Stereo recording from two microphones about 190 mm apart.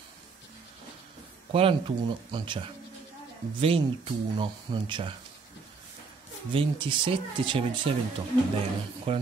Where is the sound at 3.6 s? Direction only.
30° right (ahead or behind).